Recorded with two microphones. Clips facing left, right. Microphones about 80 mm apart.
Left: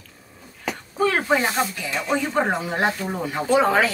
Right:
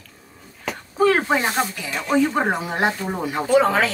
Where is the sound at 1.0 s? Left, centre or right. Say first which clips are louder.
Right 2 dB; centre.